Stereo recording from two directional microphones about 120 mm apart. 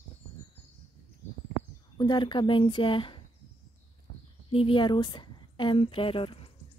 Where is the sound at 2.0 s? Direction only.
40° left (ahead or behind).